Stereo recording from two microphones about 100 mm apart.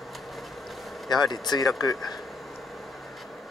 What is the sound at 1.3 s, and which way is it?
Speech, 45° left (ahead or behind).